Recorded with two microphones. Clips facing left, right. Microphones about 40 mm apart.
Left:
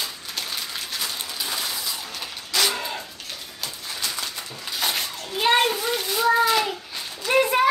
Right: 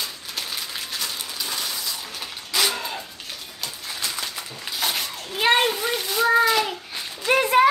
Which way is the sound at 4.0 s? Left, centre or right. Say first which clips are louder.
Even; centre.